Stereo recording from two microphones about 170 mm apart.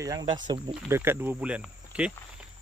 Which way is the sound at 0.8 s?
15° right (ahead or behind).